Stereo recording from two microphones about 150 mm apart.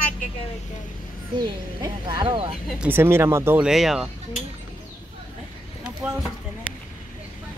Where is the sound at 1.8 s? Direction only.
30° right (ahead or behind).